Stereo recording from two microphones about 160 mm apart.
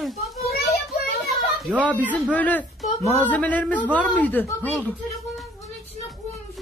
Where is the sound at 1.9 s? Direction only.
10° left (ahead or behind).